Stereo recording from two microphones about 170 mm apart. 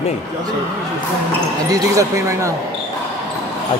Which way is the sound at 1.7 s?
20° right (ahead or behind).